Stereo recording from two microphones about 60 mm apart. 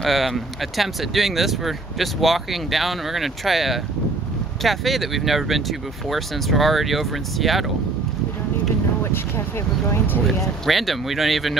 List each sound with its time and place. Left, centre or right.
0.0 s speech: centre
9.8 s speech: left
10.6 s speech: centre